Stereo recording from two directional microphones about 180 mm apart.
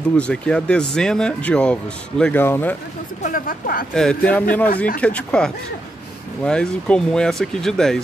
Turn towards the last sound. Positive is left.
turn(degrees=5)  # may be behind; listen again after turning